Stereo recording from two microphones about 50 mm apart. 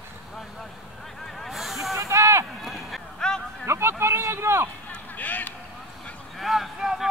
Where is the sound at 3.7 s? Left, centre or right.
Right.